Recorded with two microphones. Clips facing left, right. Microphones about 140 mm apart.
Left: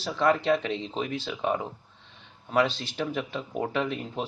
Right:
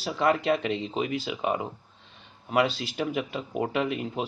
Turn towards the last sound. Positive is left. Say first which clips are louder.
# right 1 dB
turn(degrees=-5)  # may be behind; listen again after turning